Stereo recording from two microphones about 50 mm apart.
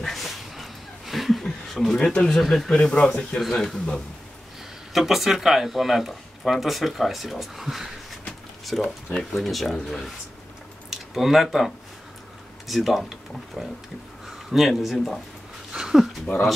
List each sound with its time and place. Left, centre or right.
0.0 s a sound: centre
2.2 s speech: centre
2.8 s speech: centre
3.3 s speech: centre
4.9 s speech: centre
15.7 s a sound: centre